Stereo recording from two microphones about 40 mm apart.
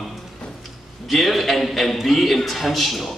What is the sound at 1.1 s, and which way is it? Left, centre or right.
A man's voice, centre.